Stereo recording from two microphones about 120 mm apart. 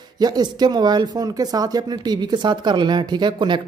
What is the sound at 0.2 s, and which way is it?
Speech, 35° right (ahead or behind).